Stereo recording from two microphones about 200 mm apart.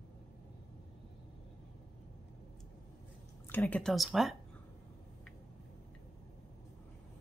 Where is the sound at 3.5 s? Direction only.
10° left (ahead or behind).